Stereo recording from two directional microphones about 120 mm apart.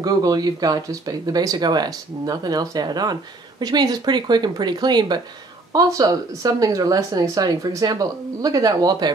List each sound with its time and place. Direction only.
0.0 s speech: 30° right (ahead or behind)